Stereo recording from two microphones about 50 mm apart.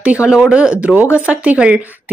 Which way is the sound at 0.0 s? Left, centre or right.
Right.